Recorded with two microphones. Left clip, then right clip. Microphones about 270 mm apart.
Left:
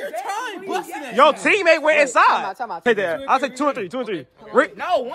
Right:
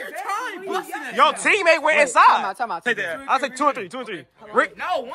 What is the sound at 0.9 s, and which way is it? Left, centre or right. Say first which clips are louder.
A man's voice: left 3 dB; centre.